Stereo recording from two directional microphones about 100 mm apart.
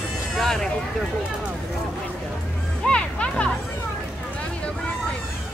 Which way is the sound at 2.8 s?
10° left (ahead or behind).